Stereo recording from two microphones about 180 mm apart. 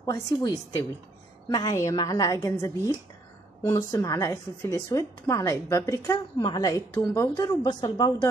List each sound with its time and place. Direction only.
0.0 s a woman's voice: 20° left (ahead or behind)